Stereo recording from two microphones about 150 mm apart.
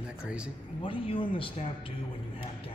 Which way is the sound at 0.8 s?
35° left (ahead or behind).